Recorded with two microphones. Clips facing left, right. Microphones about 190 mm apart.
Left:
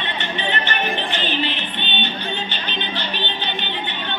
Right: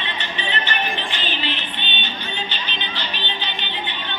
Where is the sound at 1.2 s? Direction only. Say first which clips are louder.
Left 4 dB; 55° left (ahead or behind).